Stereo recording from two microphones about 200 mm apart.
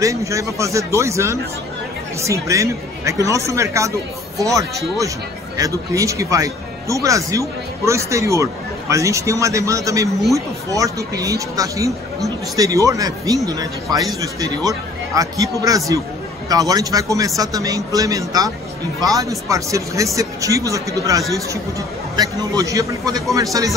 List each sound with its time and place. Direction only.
0.0 s speech: 15° right (ahead or behind)